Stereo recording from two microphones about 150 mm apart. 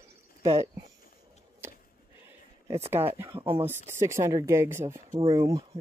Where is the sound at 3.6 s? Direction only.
15° right (ahead or behind).